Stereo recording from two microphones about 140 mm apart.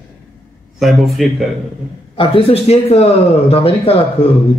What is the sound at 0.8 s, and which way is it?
Speech, centre (ahead or behind).